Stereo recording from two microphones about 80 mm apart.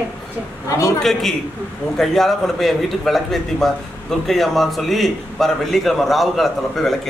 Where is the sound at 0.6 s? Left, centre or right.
Left.